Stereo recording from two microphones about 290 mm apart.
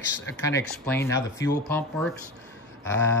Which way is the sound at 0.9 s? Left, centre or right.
Centre.